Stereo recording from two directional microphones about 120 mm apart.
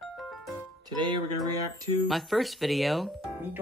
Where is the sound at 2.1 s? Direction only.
Centre (ahead or behind).